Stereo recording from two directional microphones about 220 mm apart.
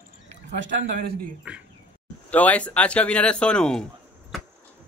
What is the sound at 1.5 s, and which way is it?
Speech, 5° right (ahead or behind).